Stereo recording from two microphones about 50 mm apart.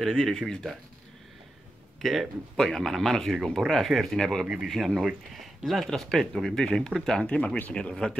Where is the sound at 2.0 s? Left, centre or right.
Centre.